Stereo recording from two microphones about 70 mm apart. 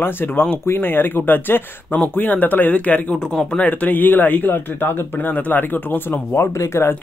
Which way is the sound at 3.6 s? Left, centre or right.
Left.